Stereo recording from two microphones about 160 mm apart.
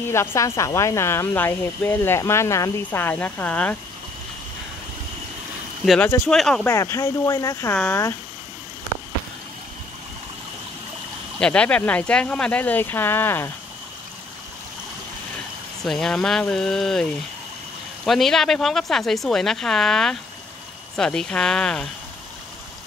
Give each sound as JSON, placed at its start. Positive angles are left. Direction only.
{"t": 0.0, "sound": "speech", "side_deg": 15}
{"t": 5.8, "sound": "speech", "side_deg": -5}
{"t": 6.6, "sound": "speech", "side_deg": 20}
{"t": 11.3, "sound": "speech", "side_deg": 5}
{"t": 15.8, "sound": "speech", "side_deg": 5}